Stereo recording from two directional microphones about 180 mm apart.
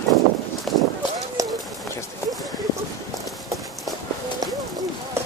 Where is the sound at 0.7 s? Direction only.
Centre (ahead or behind).